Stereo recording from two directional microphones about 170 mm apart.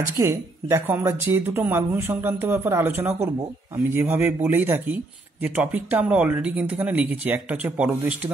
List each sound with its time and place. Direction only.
0.2 s a man's voice: 15° right (ahead or behind)